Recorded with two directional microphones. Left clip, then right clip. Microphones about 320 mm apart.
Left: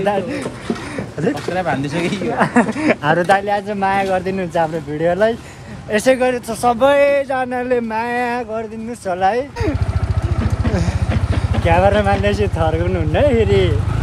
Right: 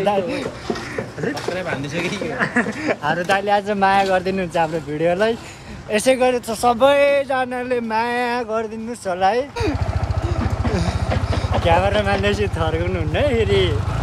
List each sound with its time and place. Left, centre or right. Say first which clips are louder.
0.0 s speech: left 1 dB; centre
3.3 s speech: left 2 dB; centre
11.6 s speech: left 4 dB; centre